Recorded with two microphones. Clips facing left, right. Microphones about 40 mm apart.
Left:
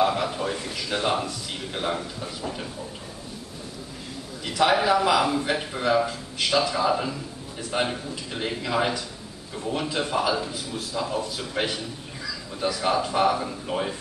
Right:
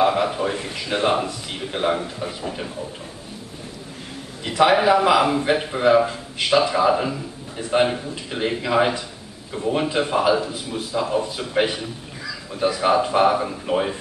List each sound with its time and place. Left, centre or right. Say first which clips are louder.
0.0 s speech: right 4 dB; centre
4.5 s a man's voice: right 5 dB; centre